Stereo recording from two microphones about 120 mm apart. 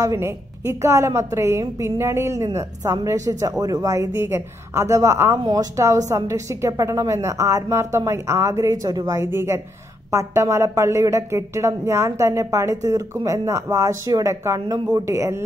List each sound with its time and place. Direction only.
0.0 s speech: 25° right (ahead or behind)